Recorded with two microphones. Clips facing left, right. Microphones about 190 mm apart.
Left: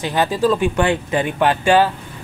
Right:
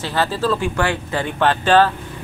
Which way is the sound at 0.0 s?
15° left (ahead or behind).